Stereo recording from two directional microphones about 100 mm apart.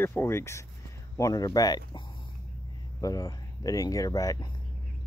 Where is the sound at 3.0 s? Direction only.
35° left (ahead or behind).